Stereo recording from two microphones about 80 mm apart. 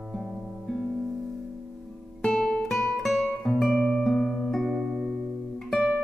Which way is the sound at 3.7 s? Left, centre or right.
Centre.